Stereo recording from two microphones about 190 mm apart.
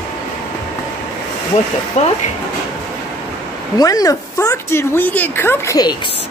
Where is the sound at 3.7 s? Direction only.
20° left (ahead or behind).